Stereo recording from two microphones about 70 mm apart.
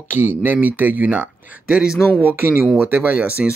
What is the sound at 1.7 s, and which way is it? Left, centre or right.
Speech, centre.